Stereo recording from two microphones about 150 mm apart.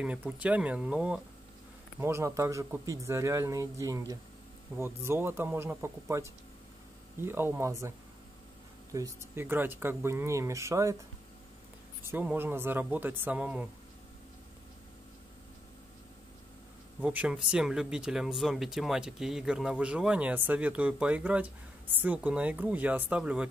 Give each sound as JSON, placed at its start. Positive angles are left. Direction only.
{"t": 0.4, "sound": "speech", "side_deg": -10}
{"t": 8.9, "sound": "speech", "side_deg": -20}
{"t": 12.0, "sound": "speech", "side_deg": -15}
{"t": 17.0, "sound": "speech", "side_deg": -10}